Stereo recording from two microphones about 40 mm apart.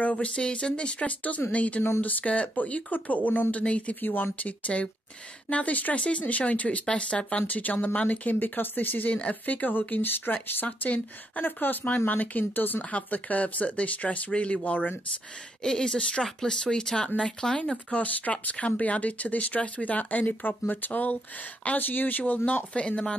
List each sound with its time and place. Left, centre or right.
0.0 s speech: left
3.6 s speech: left
3.9 s speech: left
6.9 s speech: left
7.5 s speech: left
9.1 s speech: left
15.6 s speech: centre
17.9 s speech: left
22.8 s speech: left